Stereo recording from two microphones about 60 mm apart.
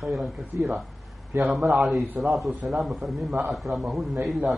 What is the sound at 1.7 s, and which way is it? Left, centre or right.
A man's voice, centre.